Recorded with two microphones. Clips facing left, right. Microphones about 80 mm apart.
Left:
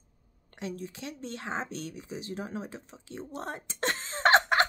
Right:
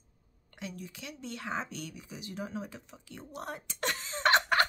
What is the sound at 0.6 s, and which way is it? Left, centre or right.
Speech, left.